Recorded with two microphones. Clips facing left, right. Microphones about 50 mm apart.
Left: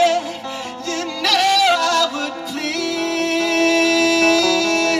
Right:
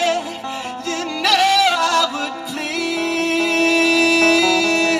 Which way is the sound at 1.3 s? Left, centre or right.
Centre.